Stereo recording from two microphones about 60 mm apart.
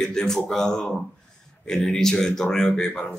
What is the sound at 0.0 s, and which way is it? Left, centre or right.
A man's voice, centre.